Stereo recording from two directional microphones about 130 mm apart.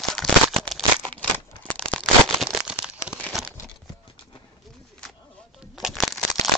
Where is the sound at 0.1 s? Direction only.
Centre (ahead or behind).